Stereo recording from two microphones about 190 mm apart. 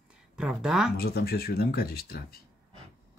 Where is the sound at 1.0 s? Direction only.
55° left (ahead or behind).